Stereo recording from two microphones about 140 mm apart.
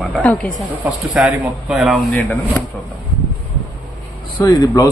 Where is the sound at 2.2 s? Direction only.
20° left (ahead or behind).